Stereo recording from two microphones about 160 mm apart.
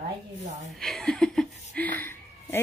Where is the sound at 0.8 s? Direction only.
Centre (ahead or behind).